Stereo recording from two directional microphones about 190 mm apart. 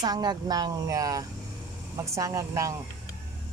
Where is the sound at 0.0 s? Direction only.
20° right (ahead or behind).